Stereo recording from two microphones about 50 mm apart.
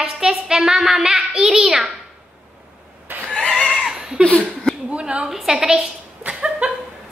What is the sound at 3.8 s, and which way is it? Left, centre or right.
Laughter, centre.